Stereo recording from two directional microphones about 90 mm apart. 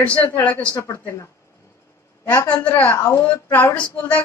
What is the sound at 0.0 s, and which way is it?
Speech, 20° left (ahead or behind).